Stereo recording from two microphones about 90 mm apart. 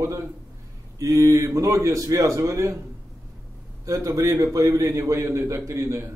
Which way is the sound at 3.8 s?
40° right (ahead or behind).